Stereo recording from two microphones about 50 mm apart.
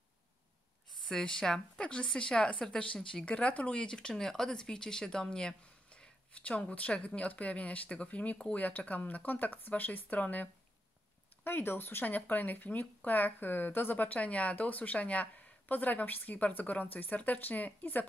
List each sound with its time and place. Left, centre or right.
1.2 s speech: centre
6.3 s speech: left
11.4 s speech: left